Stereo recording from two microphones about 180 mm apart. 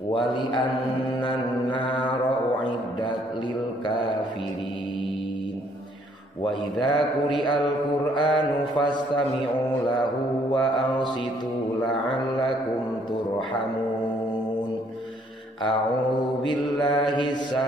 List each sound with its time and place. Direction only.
0.1 s a man's voice: 25° left (ahead or behind)
1.2 s mantra: 25° left (ahead or behind)
6.8 s mantra: 25° left (ahead or behind)
10.5 s mantra: 25° left (ahead or behind)
16.8 s mantra: 25° left (ahead or behind)